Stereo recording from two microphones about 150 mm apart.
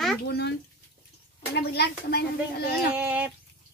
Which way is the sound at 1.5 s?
90° left.